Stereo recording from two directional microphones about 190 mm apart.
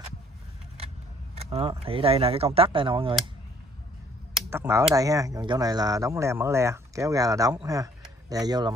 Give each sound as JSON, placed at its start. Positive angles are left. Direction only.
{"t": 1.8, "sound": "speech", "side_deg": -30}
{"t": 4.5, "sound": "a sound", "side_deg": -15}
{"t": 4.9, "sound": "speech", "side_deg": -15}